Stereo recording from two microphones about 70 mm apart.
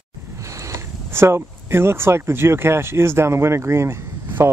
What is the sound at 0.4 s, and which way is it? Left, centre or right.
Speech, right.